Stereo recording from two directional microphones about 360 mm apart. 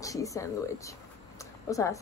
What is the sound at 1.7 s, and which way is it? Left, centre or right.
Speech, centre.